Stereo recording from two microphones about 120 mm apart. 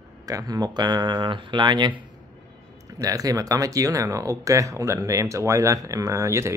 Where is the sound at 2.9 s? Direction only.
30° right (ahead or behind).